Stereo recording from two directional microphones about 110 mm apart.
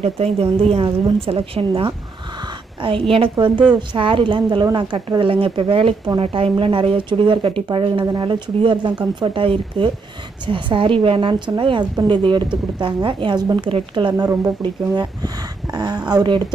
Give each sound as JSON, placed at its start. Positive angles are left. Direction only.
{"t": 0.0, "sound": "speech", "side_deg": -70}
{"t": 1.2, "sound": "a woman's voice", "side_deg": -60}
{"t": 2.8, "sound": "a woman's voice", "side_deg": -55}
{"t": 13.7, "sound": "a woman's voice", "side_deg": -50}
{"t": 14.1, "sound": "speech", "side_deg": -35}